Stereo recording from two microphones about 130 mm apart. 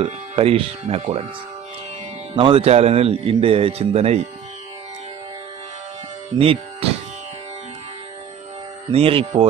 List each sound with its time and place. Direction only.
0.0 s a man's voice: 50° right (ahead or behind)
2.3 s a man's voice: 40° right (ahead or behind)
6.3 s speech: 45° right (ahead or behind)
8.9 s a man's voice: 45° right (ahead or behind)
9.2 s speech: 35° right (ahead or behind)